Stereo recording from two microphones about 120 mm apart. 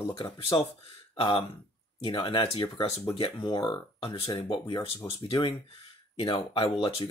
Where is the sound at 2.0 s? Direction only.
45° left (ahead or behind).